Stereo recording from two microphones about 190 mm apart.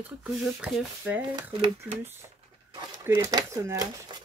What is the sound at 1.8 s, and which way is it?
Speech, 10° right (ahead or behind).